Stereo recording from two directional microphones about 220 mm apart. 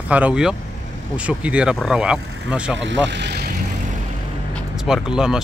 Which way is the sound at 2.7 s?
55° right (ahead or behind).